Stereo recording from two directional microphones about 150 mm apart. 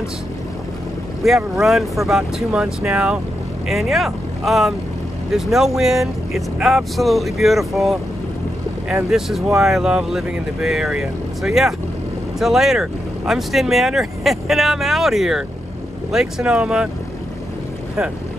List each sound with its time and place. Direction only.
1.2 s speech: centre (ahead or behind)